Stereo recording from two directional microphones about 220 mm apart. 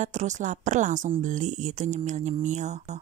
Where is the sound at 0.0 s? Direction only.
30° right (ahead or behind).